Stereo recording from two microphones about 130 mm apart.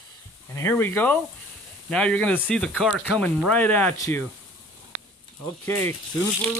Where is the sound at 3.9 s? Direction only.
25° left (ahead or behind).